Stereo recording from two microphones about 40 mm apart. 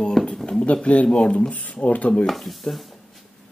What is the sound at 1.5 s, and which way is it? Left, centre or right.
Speech, left.